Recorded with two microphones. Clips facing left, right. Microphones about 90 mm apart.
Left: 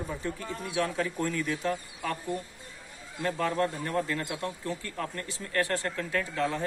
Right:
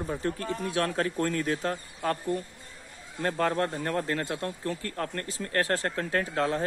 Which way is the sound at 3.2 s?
45° right (ahead or behind).